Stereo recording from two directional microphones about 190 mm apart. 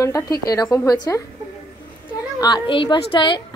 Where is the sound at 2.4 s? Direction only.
25° left (ahead or behind).